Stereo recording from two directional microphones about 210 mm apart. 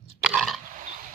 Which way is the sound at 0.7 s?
40° right (ahead or behind).